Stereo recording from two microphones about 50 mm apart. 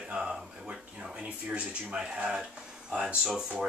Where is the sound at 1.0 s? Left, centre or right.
Right.